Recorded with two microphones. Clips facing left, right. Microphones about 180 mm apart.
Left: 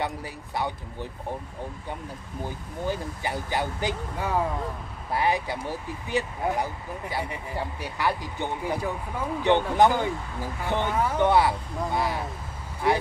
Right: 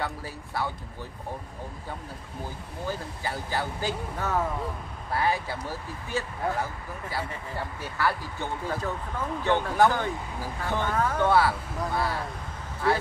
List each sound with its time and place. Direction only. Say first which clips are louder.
0.0 s speech: left 2 dB; 20° left (ahead or behind)
2.9 s speech: left 3 dB; 20° left (ahead or behind)